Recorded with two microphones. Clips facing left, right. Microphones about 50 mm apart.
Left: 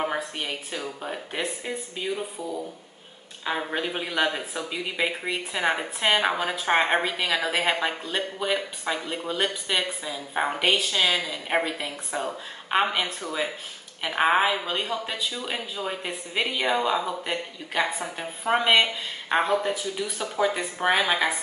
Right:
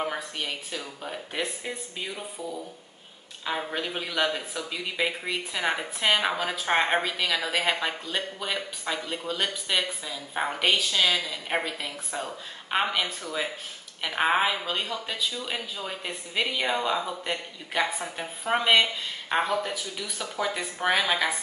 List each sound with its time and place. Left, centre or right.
0.0 s a woman's voice: centre
3.4 s speech: centre